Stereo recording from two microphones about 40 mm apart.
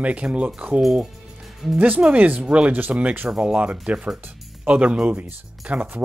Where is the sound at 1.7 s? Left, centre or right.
Right.